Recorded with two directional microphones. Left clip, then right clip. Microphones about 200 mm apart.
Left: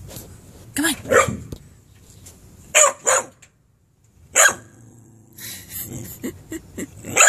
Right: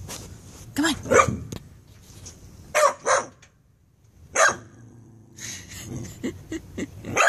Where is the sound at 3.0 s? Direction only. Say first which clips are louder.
Left 2 dB; 10° left (ahead or behind).